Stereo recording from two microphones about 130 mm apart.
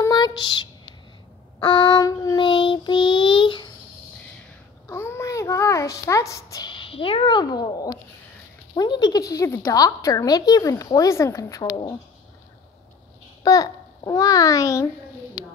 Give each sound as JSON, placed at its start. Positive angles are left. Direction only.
{"t": 0.1, "sound": "a sound", "side_deg": 35}
{"t": 1.6, "sound": "speech", "side_deg": 40}
{"t": 2.0, "sound": "a woman's voice", "side_deg": 25}
{"t": 2.4, "sound": "child singing", "side_deg": 40}
{"t": 4.8, "sound": "a sound", "side_deg": 20}
{"t": 8.7, "sound": "a woman's voice", "side_deg": 35}
{"t": 11.6, "sound": "speech", "side_deg": 35}
{"t": 13.4, "sound": "a child's voice", "side_deg": 30}